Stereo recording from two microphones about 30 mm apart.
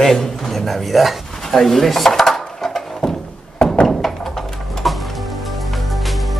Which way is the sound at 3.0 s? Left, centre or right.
Left.